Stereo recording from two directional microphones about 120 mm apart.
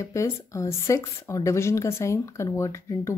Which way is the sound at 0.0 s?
25° left (ahead or behind).